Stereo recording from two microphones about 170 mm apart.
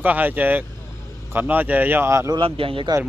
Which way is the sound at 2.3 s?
35° right (ahead or behind).